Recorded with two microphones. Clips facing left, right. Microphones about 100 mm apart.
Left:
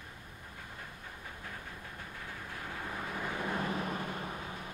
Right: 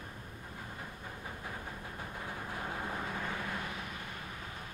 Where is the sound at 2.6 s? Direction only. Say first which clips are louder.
Right 3 dB; 30° right (ahead or behind).